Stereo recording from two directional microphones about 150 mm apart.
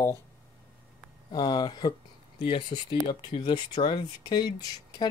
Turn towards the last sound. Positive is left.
turn(degrees=25)  # may be behind; listen again after turning